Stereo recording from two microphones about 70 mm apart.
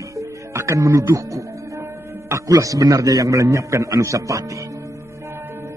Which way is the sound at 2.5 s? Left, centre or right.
Right.